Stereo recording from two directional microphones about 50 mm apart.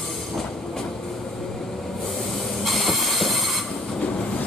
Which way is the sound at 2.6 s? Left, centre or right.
Centre.